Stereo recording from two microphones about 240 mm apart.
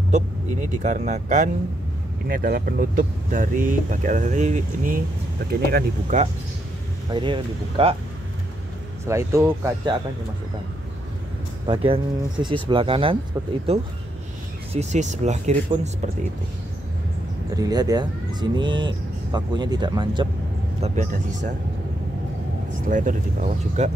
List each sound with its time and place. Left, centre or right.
0.1 s speech: right
7.1 s speech: centre
9.0 s speech: centre
11.6 s speech: right
17.6 s speech: centre
20.8 s speech: right
22.8 s speech: right